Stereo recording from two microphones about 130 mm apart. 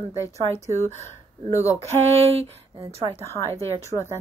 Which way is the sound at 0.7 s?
20° left (ahead or behind).